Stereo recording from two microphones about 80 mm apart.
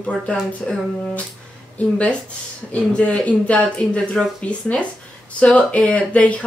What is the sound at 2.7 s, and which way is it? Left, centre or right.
Speech, centre.